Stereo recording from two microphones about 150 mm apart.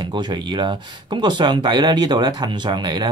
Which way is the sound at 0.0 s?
30° right (ahead or behind).